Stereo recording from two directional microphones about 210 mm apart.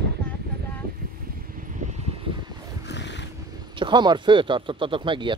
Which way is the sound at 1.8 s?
30° right (ahead or behind).